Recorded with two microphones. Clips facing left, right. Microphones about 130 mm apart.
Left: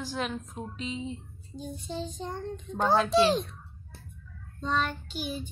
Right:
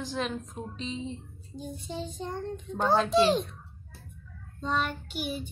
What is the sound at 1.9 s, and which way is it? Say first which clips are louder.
A woman's voice: even; 5° right (ahead or behind).